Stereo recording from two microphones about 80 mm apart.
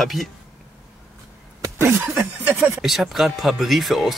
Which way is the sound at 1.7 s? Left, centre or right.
Right.